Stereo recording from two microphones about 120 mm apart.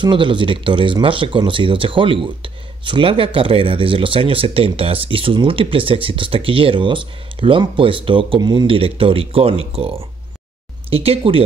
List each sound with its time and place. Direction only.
0.0 s speech: 40° right (ahead or behind)